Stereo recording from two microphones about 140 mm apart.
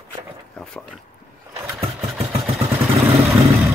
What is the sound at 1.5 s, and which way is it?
Vehicle, 20° right (ahead or behind).